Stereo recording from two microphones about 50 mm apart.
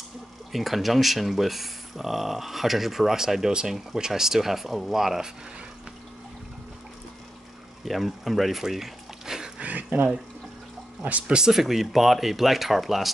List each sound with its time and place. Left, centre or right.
0.5 s speech: centre
7.8 s speech: centre
9.6 s a sound: right
11.1 s speech: right
11.3 s speech: centre